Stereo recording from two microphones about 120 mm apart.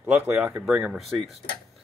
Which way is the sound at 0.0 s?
10° right (ahead or behind).